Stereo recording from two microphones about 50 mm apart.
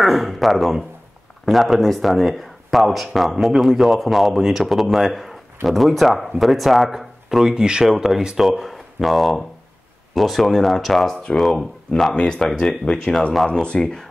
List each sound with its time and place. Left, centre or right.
0.0 s speech: centre
12.2 s speech: centre